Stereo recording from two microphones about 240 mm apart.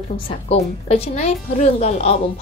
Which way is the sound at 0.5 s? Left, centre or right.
Left.